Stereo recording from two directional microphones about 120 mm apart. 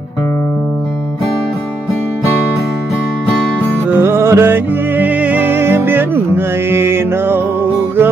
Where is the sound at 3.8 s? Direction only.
20° right (ahead or behind).